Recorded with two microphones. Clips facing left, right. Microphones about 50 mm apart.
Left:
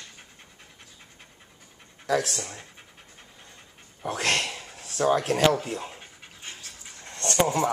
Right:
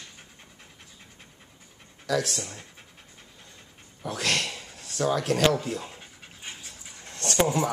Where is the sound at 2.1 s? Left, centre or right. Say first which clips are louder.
Left 2 dB; left.